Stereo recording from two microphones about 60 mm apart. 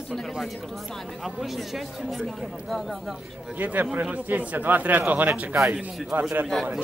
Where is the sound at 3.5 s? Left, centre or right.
Right.